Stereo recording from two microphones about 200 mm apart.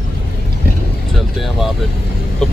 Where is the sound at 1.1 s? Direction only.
Centre (ahead or behind).